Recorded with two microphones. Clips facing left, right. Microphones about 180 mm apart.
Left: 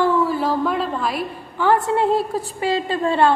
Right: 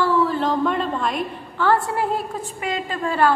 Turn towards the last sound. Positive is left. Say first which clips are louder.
# left 3 dB
turn(degrees=25)  # may be behind; listen again after turning